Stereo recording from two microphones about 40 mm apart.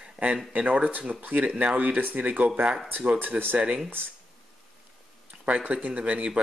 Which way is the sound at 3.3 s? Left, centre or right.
Right.